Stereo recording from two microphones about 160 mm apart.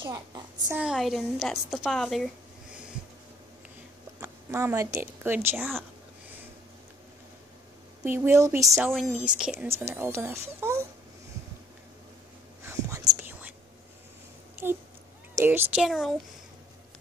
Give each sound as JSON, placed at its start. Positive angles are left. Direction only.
{"t": 0.0, "sound": "a child's voice", "side_deg": -20}
{"t": 0.7, "sound": "a woman's voice", "side_deg": -5}
{"t": 4.2, "sound": "speech", "side_deg": -15}
{"t": 8.0, "sound": "speech", "side_deg": -15}
{"t": 8.7, "sound": "a woman's voice", "side_deg": 0}
{"t": 12.6, "sound": "whispering", "side_deg": -20}
{"t": 14.5, "sound": "a sound", "side_deg": -15}
{"t": 15.3, "sound": "speech", "side_deg": -15}